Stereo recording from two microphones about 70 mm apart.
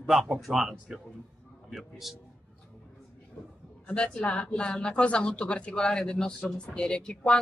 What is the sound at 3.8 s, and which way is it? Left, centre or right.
Speech, centre.